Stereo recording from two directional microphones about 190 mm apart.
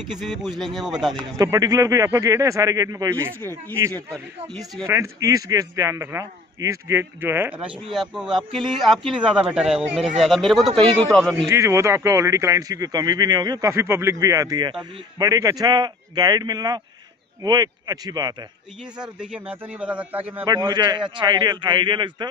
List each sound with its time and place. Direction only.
0.0 s speech: centre (ahead or behind)
1.4 s speech: 20° right (ahead or behind)
3.3 s speech: 10° left (ahead or behind)
4.8 s speech: 15° right (ahead or behind); by 11.4 s centre (ahead or behind)
11.4 s speech: 15° right (ahead or behind)
18.9 s speech: 5° right (ahead or behind)
20.4 s speech: 20° right (ahead or behind)